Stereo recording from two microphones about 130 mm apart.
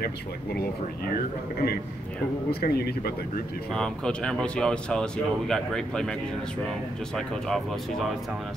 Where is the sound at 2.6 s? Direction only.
90° left.